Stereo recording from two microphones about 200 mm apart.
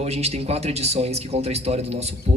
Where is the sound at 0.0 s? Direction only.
30° right (ahead or behind).